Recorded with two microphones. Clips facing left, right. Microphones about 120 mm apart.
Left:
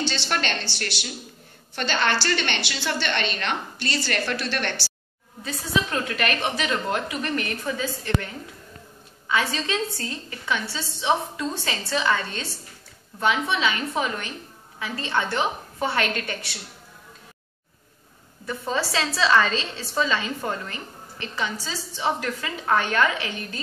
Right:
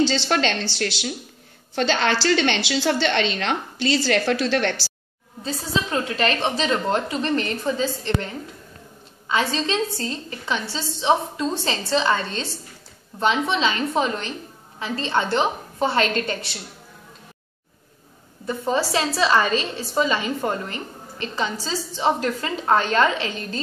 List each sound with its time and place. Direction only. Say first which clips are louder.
0.1 s a woman's voice: right 6 dB; 90° right
5.4 s a woman's voice: right 1 dB; 25° right (ahead or behind)
18.4 s a woman's voice: right 4 dB; 20° right (ahead or behind)